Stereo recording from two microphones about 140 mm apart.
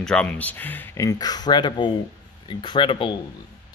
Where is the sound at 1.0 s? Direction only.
30° left (ahead or behind).